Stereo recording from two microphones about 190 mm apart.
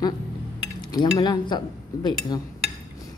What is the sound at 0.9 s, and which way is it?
Speech, 20° left (ahead or behind).